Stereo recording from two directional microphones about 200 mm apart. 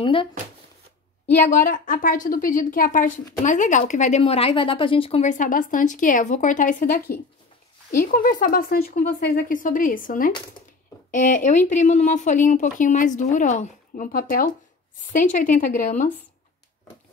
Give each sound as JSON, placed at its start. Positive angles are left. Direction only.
{"t": 0.0, "sound": "speech", "side_deg": 25}
{"t": 1.5, "sound": "a woman's voice", "side_deg": 45}